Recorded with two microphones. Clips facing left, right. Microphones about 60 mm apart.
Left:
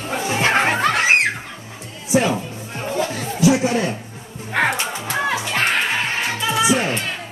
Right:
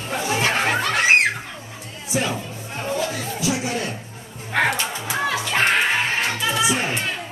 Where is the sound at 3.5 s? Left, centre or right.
Left.